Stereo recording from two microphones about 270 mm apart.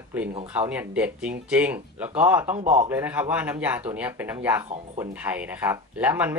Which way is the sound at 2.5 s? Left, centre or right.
Right.